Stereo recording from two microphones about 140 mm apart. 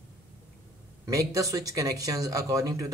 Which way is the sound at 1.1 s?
25° right (ahead or behind).